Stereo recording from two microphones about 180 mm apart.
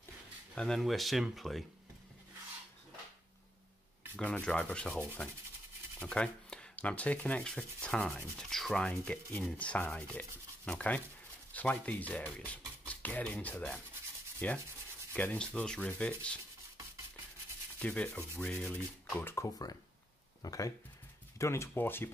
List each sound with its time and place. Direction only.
0.6 s speech: centre (ahead or behind)
4.2 s speech: 5° left (ahead or behind)
5.9 s sanding: 5° left (ahead or behind)
8.4 s speech: centre (ahead or behind)
17.7 s sanding: 5° left (ahead or behind)
18.4 s speech: 5° left (ahead or behind)